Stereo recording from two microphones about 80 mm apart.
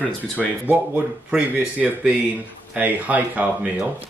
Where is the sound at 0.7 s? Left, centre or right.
Centre.